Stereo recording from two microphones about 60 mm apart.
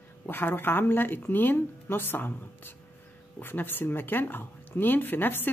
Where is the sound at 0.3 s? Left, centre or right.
Left.